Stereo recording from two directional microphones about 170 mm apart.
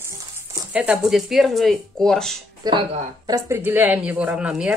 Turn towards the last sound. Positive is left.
turn(degrees=-5)  # may be behind; listen again after turning